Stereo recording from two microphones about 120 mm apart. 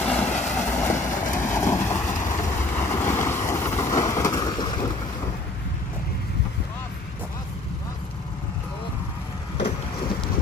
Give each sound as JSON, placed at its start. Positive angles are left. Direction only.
{"t": 0.0, "sound": "vehicle", "side_deg": 10}
{"t": 0.7, "sound": "vehicle", "side_deg": 20}